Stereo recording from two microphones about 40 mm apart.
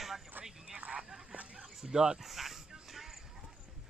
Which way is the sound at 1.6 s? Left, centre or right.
Centre.